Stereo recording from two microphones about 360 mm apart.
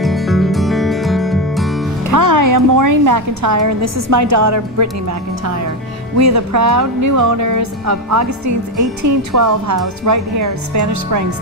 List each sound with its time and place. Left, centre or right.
0.0 s music: centre
2.0 s music: right
6.1 s speech: right